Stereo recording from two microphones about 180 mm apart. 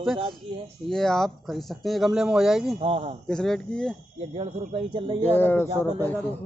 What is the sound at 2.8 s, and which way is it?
Speech, 30° right (ahead or behind).